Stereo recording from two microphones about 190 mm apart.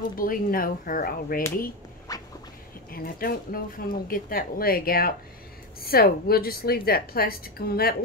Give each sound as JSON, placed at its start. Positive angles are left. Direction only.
{"t": 0.2, "sound": "a woman's voice", "side_deg": 50}
{"t": 2.1, "sound": "a sound", "side_deg": 20}
{"t": 2.9, "sound": "a woman's voice", "side_deg": 50}